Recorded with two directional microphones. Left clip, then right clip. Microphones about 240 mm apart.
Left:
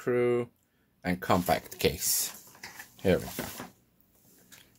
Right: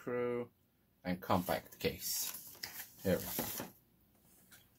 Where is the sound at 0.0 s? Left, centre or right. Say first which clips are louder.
Left 10 dB; left.